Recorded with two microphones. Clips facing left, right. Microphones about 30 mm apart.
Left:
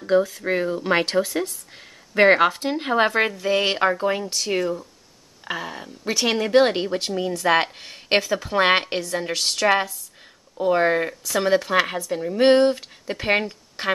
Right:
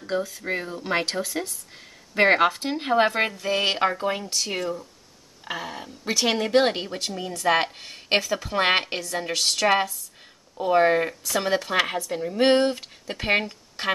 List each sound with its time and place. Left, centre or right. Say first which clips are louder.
0.4 s speech: left 6 dB; centre
2.1 s speech: left 3 dB; centre